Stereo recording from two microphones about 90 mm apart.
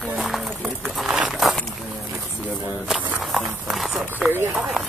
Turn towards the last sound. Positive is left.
turn(degrees=-20)  # may be behind; listen again after turning